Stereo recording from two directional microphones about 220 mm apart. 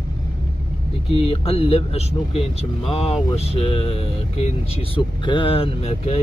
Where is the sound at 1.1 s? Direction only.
25° left (ahead or behind).